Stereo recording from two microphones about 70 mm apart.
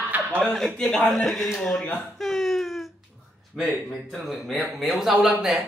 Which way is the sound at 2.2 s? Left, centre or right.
Centre.